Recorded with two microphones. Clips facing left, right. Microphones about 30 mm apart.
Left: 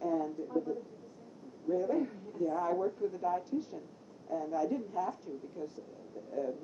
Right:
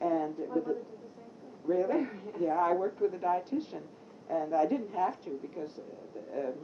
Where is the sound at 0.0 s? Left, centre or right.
Right.